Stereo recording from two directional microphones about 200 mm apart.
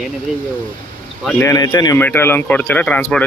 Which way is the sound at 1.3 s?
15° left (ahead or behind).